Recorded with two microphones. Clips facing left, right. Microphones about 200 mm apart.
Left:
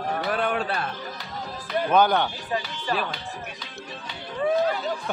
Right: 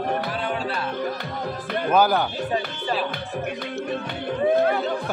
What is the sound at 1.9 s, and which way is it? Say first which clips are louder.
Speech: right 1 dB; 5° right (ahead or behind).